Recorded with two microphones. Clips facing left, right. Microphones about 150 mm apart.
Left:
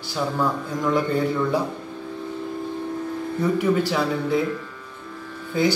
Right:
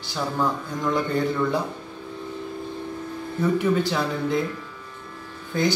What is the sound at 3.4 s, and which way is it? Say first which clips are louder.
Speech: even; 10° left (ahead or behind).